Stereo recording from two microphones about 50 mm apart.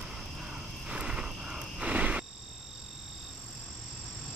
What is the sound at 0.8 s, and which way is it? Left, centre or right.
Vehicle, centre.